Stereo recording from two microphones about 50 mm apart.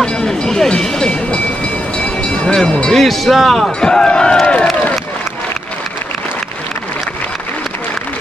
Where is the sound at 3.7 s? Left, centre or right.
Centre.